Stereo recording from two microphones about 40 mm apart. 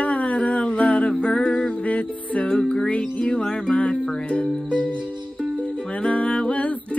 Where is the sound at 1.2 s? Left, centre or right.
Left.